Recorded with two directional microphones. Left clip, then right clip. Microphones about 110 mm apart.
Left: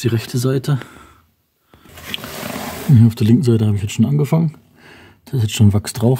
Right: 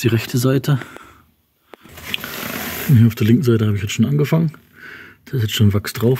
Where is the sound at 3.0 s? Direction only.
30° left (ahead or behind).